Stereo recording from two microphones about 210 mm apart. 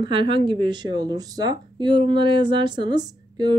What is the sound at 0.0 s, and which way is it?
Speech, 25° right (ahead or behind).